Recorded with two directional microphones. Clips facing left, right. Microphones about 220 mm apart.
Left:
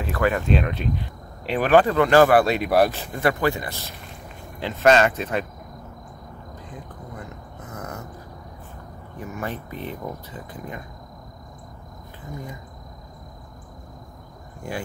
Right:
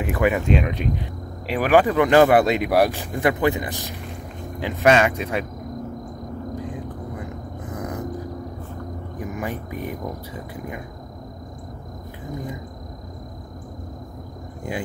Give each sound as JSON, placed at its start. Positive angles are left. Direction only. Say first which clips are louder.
{"t": 0.0, "sound": "speech", "louder": "right 2 dB", "side_deg": -15}
{"t": 7.7, "sound": "a sound", "louder": "right 5 dB", "side_deg": -15}
{"t": 9.2, "sound": "speech", "louder": "right 2 dB", "side_deg": -15}
{"t": 14.7, "sound": "speech", "louder": "right 2 dB", "side_deg": -20}